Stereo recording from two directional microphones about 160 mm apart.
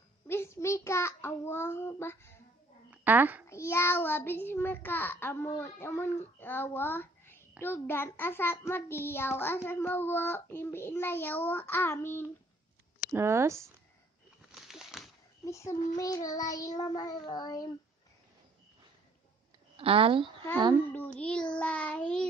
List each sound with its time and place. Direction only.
0.3 s a child's voice: 15° left (ahead or behind)
2.9 s a sound: 10° right (ahead or behind)
3.4 s a child's voice: 15° left (ahead or behind)
13.1 s speech: 15° right (ahead or behind)
14.5 s a sound: centre (ahead or behind)
15.4 s child singing: 20° left (ahead or behind)
19.8 s speech: 35° right (ahead or behind)
20.9 s a child's voice: 10° left (ahead or behind)